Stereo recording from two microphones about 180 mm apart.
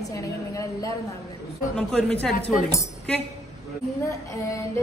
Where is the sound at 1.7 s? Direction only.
5° left (ahead or behind).